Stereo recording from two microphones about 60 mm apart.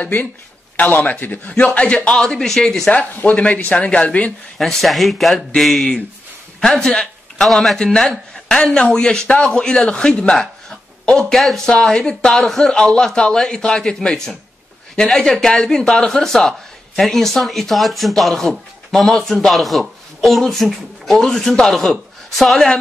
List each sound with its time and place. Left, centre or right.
0.0 s speech: left
1.5 s speech: left
3.2 s a man's voice: left
4.6 s a man's voice: centre
7.8 s speech: centre
11.3 s a man's voice: centre